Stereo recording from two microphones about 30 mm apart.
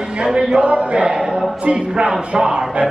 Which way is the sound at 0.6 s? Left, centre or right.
Right.